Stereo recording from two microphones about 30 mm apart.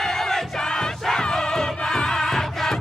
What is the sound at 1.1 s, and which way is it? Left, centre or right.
Music, left.